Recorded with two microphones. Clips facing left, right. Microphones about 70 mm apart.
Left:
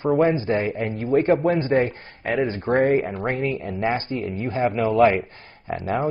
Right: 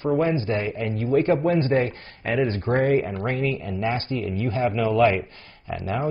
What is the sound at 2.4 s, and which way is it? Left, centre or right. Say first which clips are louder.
Speech: even; centre.